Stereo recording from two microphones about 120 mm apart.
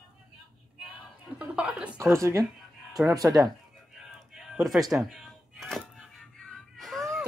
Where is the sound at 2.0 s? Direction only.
25° right (ahead or behind).